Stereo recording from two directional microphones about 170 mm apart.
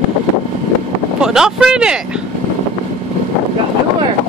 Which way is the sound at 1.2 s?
5° right (ahead or behind).